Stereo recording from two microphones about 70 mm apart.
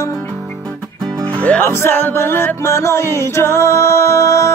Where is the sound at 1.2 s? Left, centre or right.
Left.